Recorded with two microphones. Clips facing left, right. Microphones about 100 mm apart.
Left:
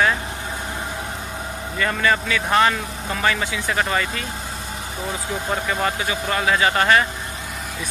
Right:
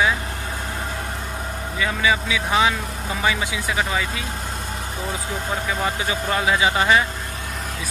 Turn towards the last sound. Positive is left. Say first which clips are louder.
# left 1 dB
turn(degrees=-10)  # may be behind; listen again after turning